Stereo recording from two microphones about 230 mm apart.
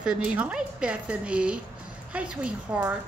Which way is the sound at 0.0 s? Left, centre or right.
Centre.